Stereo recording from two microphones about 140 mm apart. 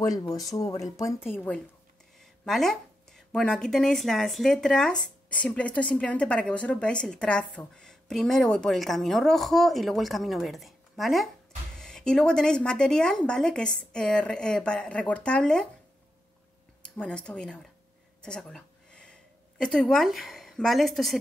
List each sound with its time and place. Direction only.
0.6 s speech: 25° left (ahead or behind)
1.3 s a woman's voice: 10° left (ahead or behind)
2.1 s a woman's voice: centre (ahead or behind)
16.8 s a woman's voice: 5° left (ahead or behind)
18.2 s a sound: 5° left (ahead or behind)
19.6 s speech: 5° left (ahead or behind)